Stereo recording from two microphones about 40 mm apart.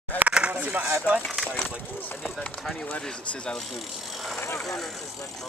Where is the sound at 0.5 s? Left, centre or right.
Right.